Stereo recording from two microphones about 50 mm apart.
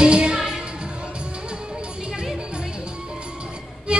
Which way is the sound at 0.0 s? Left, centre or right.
Centre.